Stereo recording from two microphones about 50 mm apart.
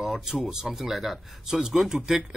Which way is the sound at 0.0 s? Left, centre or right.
Centre.